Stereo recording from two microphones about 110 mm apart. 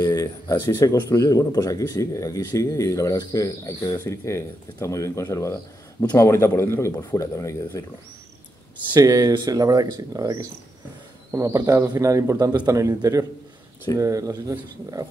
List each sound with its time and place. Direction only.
0.1 s speech: 30° left (ahead or behind)
8.9 s speech: 35° right (ahead or behind)
11.4 s speech: 30° right (ahead or behind)